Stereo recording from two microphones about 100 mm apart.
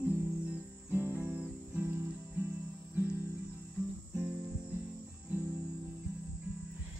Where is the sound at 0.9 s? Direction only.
20° right (ahead or behind).